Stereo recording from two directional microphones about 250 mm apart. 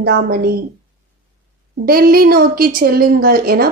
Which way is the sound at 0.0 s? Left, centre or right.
Right.